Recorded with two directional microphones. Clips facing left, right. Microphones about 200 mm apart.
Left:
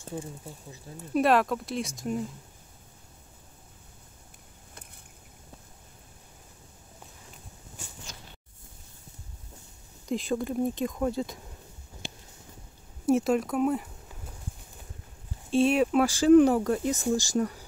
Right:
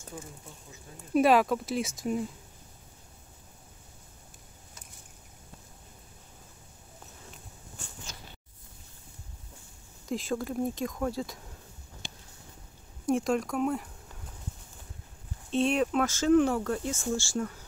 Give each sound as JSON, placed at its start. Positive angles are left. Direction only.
{"t": 0.0, "sound": "speech", "side_deg": 30}
{"t": 1.1, "sound": "speech", "side_deg": 0}
{"t": 10.0, "sound": "speech", "side_deg": 0}
{"t": 13.0, "sound": "speech", "side_deg": 5}
{"t": 15.5, "sound": "speech", "side_deg": 5}